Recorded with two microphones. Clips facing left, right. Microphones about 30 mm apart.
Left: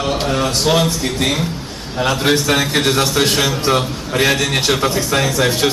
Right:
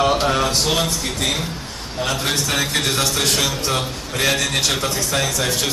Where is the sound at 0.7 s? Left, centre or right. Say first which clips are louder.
Left 5 dB; centre.